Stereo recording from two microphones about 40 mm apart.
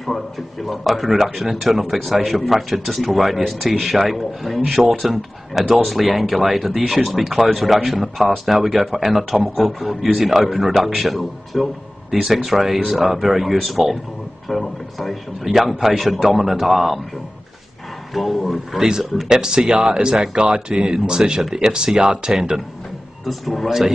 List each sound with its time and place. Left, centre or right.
0.0 s speech: centre
18.1 s speech: centre
18.8 s speech: centre
23.2 s speech: centre